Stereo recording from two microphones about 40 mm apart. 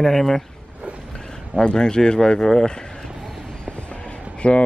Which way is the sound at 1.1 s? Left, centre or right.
Centre.